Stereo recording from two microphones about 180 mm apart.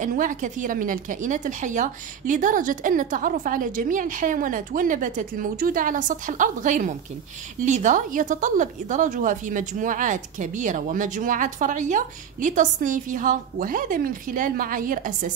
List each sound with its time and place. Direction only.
0.0 s a woman's voice: 45° right (ahead or behind)